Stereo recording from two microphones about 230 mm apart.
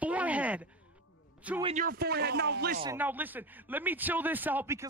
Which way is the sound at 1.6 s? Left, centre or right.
Right.